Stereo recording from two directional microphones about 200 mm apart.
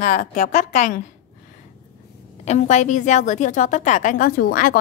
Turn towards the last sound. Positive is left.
turn(degrees=45)  # may be behind; listen again after turning